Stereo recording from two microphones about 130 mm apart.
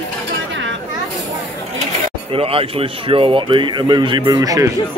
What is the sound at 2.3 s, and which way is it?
Speech, 45° right (ahead or behind).